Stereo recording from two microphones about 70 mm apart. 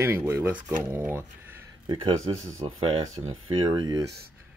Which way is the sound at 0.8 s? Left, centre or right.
Right.